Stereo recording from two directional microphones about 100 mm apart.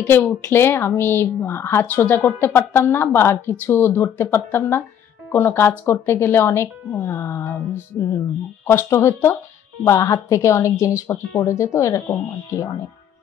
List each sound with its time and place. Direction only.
0.0 s a woman's voice: 20° left (ahead or behind)
8.6 s a woman's voice: 25° left (ahead or behind)